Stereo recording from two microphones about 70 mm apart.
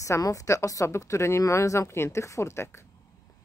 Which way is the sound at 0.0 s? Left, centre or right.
Left.